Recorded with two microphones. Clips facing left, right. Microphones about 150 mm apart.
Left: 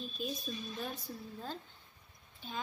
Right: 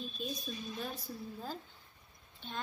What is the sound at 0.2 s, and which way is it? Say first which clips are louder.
Speech: left 2 dB; centre (ahead or behind).